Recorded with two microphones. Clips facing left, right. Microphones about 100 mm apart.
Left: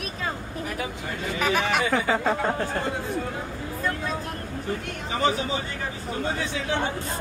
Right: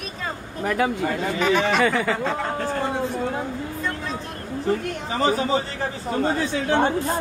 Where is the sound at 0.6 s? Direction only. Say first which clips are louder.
Right 10 dB; 75° right (ahead or behind).